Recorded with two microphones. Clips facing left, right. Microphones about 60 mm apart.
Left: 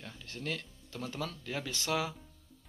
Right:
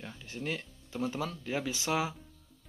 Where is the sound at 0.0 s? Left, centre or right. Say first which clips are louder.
Right 3 dB; centre.